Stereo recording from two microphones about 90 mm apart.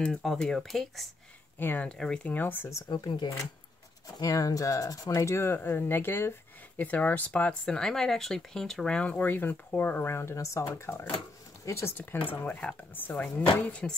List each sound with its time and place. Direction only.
0.0 s speech: 5° left (ahead or behind)
1.6 s speech: 20° left (ahead or behind)
1.9 s speech: 10° left (ahead or behind)
2.3 s speech: 20° left (ahead or behind)
2.9 s speech: 55° left (ahead or behind)
4.2 s speech: 40° left (ahead or behind); by 13.9 s 15° left (ahead or behind)